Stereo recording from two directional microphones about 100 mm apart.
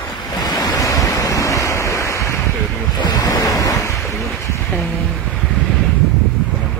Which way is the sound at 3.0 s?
40° left (ahead or behind).